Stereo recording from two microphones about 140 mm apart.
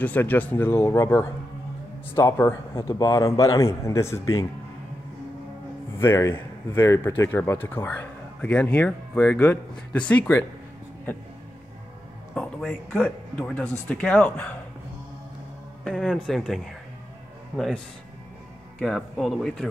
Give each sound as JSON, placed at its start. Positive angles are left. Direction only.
{"t": 0.0, "sound": "speech", "side_deg": 15}
{"t": 2.9, "sound": "a man's voice", "side_deg": 30}
{"t": 5.9, "sound": "speech", "side_deg": 20}
{"t": 12.4, "sound": "speech", "side_deg": 5}
{"t": 15.8, "sound": "speech", "side_deg": 5}
{"t": 18.8, "sound": "speech", "side_deg": 0}